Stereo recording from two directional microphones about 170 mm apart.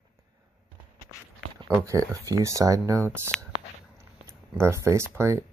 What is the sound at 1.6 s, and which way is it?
Speech, 20° right (ahead or behind).